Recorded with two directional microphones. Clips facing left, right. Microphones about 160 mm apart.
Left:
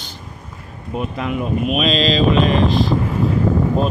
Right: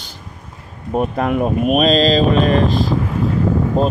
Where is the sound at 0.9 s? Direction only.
45° right (ahead or behind).